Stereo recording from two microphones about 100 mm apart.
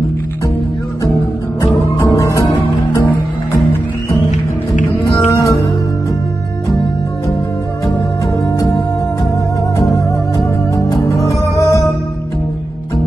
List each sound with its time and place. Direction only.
1.6 s music: 35° left (ahead or behind)
5.0 s music: 30° left (ahead or behind)
8.5 s music: 35° left (ahead or behind)
9.8 s music: 30° left (ahead or behind)